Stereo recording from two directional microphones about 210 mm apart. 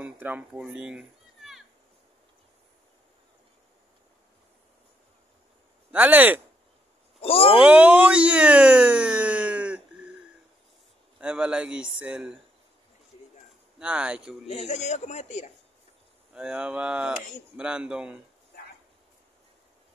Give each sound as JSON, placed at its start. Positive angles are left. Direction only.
{"t": 0.0, "sound": "a child's voice", "side_deg": -5}
{"t": 5.9, "sound": "speech", "side_deg": -10}
{"t": 7.2, "sound": "speech", "side_deg": 25}
{"t": 7.6, "sound": "a sound", "side_deg": -5}
{"t": 11.1, "sound": "speech", "side_deg": -5}
{"t": 13.7, "sound": "speech", "side_deg": -5}
{"t": 14.5, "sound": "a man's voice", "side_deg": 30}
{"t": 16.3, "sound": "speech", "side_deg": -5}